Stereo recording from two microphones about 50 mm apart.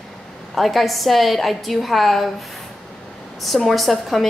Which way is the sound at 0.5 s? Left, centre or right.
Centre.